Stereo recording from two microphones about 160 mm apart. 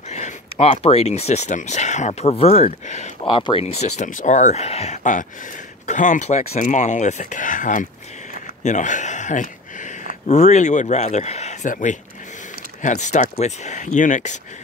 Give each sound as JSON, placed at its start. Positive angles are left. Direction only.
{"t": 0.1, "sound": "speech", "side_deg": 40}
{"t": 3.3, "sound": "speech", "side_deg": 30}